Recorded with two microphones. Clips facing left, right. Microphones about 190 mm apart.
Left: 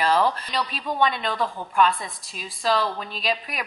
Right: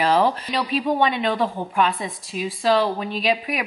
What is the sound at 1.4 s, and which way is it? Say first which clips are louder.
Speech: right 5 dB; 25° right (ahead or behind).